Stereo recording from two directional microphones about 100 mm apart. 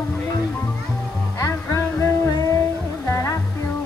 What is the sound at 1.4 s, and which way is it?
Music, 30° left (ahead or behind).